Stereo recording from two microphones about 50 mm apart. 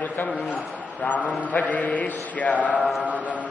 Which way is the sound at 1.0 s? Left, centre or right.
Left.